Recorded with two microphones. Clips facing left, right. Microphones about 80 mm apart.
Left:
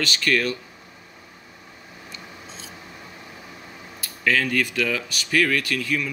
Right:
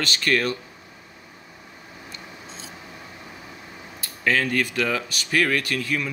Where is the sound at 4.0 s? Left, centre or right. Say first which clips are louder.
Even; right.